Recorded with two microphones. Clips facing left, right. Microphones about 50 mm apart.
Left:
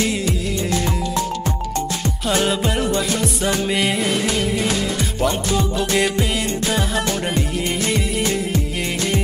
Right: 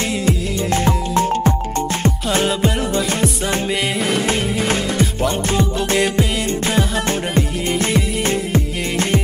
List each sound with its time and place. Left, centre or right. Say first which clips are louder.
2.4 s music: right 1 dB; centre
4.6 s music: right 3 dB; right
5.9 s music: right 2 dB; centre
8.2 s music: right 2 dB; right